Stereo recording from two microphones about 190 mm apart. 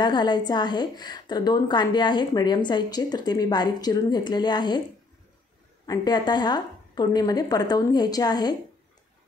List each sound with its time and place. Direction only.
0.0 s a woman's voice: 20° left (ahead or behind)
5.9 s a woman's voice: 20° left (ahead or behind)